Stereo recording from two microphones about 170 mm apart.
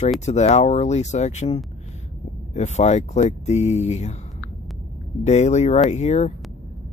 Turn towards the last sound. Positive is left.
turn(degrees=40)  # may be behind; listen again after turning